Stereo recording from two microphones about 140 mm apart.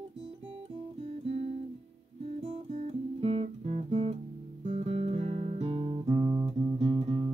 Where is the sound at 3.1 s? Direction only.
45° right (ahead or behind).